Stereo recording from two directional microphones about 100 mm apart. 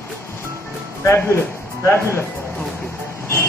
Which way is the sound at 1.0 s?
25° left (ahead or behind).